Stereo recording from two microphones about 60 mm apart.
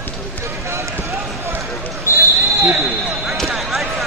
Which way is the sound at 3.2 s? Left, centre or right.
Centre.